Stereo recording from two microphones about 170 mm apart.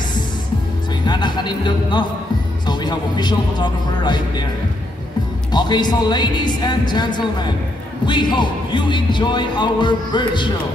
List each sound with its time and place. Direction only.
1.0 s speech: 25° left (ahead or behind)
5.5 s speech: 25° left (ahead or behind)